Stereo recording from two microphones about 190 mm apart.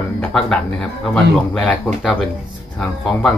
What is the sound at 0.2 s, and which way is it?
Speech, 5° left (ahead or behind).